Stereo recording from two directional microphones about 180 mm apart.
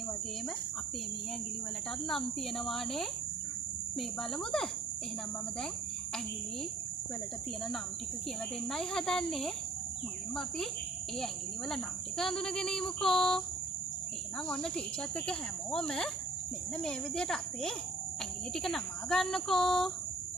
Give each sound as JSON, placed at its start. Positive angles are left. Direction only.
{"t": 2.0, "sound": "speech", "side_deg": 0}
{"t": 4.2, "sound": "speech", "side_deg": 5}
{"t": 8.6, "sound": "speech", "side_deg": 5}
{"t": 11.7, "sound": "speech", "side_deg": 0}
{"t": 15.1, "sound": "speech", "side_deg": 5}